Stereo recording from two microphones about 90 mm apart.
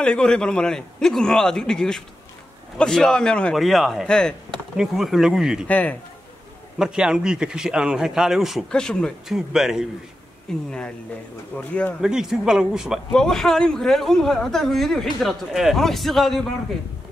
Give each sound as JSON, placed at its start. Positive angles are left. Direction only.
{"t": 0.0, "sound": "a man's voice", "side_deg": 10}
{"t": 3.5, "sound": "speech", "side_deg": 0}
{"t": 4.7, "sound": "speech", "side_deg": -5}
{"t": 5.7, "sound": "a man's voice", "side_deg": 15}
{"t": 6.8, "sound": "a man's voice", "side_deg": -10}
{"t": 8.7, "sound": "a man's voice", "side_deg": 10}
{"t": 9.3, "sound": "speech", "side_deg": -5}
{"t": 10.5, "sound": "a man's voice", "side_deg": 5}
{"t": 12.0, "sound": "speech", "side_deg": -5}
{"t": 13.1, "sound": "speech", "side_deg": 5}